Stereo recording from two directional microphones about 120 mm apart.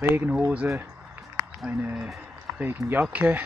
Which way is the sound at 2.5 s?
20° right (ahead or behind).